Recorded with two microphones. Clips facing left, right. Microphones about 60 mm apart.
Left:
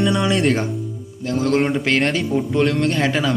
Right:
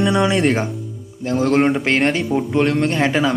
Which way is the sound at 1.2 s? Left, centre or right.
Right.